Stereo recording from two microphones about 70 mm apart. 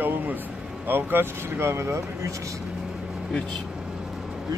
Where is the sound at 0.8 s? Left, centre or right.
Right.